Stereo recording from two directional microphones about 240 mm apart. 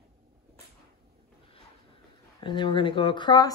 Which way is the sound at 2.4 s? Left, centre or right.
Centre.